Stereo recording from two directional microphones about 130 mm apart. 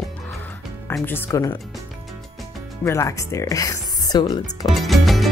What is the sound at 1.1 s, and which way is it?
Speech, 20° left (ahead or behind).